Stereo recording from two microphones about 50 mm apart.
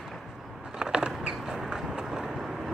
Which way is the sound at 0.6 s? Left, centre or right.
Centre.